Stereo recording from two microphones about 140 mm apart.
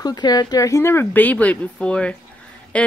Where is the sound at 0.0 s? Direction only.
30° left (ahead or behind).